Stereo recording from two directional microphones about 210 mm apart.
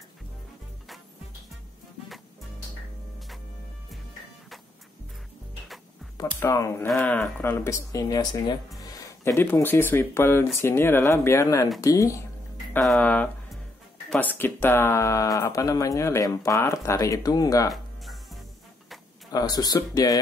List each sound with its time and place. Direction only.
6.1 s speech: 15° left (ahead or behind)
12.7 s speech: 5° left (ahead or behind)
17.6 s music: centre (ahead or behind)
19.3 s speech: 20° left (ahead or behind)